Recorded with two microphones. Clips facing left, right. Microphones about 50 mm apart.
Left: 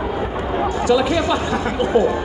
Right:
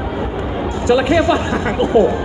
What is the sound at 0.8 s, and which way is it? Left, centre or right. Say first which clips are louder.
Speech: right 5 dB; right.